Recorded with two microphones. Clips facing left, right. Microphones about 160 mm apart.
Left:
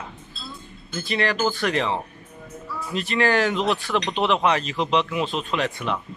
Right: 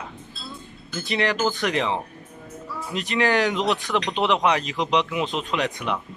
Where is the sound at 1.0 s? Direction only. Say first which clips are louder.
Even; 20° right (ahead or behind).